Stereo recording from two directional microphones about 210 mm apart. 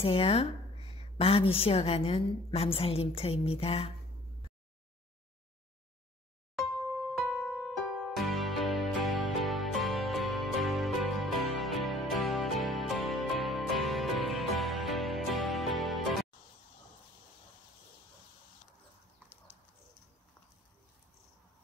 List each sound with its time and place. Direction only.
0.0 s a woman's voice: 25° left (ahead or behind)
7.2 s music: centre (ahead or behind)